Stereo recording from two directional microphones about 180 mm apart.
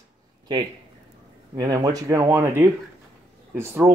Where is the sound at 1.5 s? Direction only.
20° right (ahead or behind).